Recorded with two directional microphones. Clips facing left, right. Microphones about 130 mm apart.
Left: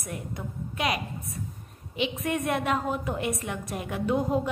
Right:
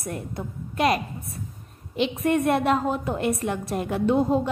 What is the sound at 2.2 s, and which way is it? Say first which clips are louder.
A woman's voice: right 8 dB; 35° right (ahead or behind).